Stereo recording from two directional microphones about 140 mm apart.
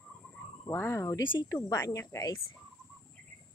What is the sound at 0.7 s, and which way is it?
Speech, 20° left (ahead or behind).